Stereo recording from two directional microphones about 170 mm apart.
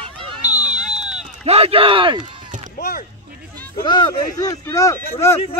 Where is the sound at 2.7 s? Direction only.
55° left (ahead or behind).